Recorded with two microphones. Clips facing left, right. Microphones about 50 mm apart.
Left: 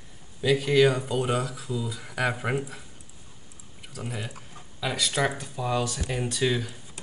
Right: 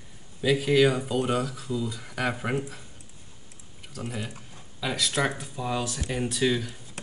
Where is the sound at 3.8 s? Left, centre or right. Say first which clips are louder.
Right 1 dB; centre.